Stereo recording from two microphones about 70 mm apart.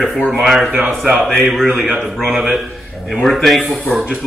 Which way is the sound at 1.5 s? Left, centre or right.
Centre.